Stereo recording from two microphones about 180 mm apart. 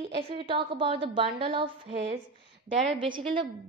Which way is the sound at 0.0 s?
30° right (ahead or behind).